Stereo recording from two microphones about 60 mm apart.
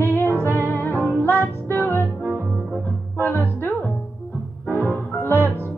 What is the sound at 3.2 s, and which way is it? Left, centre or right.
Music, left.